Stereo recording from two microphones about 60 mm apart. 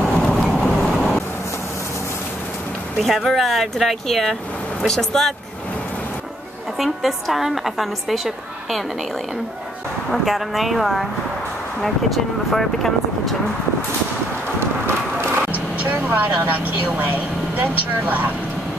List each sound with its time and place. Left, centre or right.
0.2 s vehicle: centre
3.0 s a woman's voice: centre
6.8 s a woman's voice: centre
10.1 s a woman's voice: centre
12.4 s a woman's voice: centre
14.9 s vehicle: right
16.4 s speech: right